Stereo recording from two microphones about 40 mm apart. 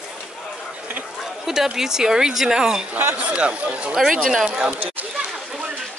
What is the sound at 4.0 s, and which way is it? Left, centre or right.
Speech, centre.